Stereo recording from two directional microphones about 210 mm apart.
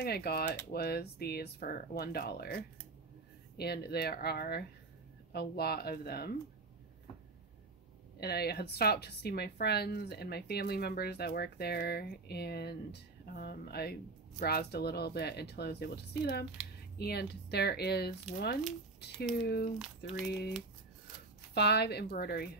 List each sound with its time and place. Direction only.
0.0 s speech: 50° left (ahead or behind)
3.5 s speech: 50° left (ahead or behind)
8.2 s speech: 50° left (ahead or behind)
21.5 s speech: 50° left (ahead or behind)